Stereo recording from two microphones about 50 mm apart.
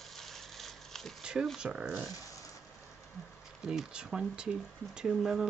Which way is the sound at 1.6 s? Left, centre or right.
Centre.